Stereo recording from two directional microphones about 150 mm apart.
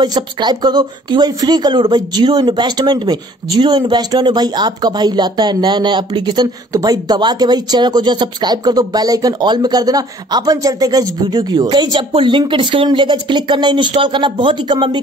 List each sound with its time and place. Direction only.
0.0 s speech: 30° right (ahead or behind)